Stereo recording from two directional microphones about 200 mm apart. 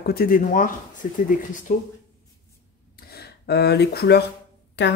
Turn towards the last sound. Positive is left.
turn(degrees=60)  # may be behind; listen again after turning